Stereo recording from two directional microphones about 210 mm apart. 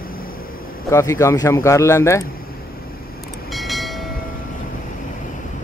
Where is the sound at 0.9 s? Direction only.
15° left (ahead or behind).